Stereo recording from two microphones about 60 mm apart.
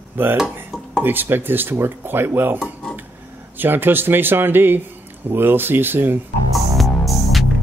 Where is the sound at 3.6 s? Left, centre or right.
Right.